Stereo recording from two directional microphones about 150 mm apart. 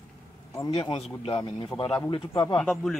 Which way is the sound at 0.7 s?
40° left (ahead or behind).